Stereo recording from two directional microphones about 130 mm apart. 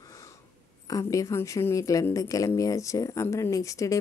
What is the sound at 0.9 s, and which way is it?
Speech, 25° left (ahead or behind).